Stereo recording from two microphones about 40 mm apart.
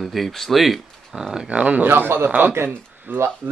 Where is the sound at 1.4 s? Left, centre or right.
Right.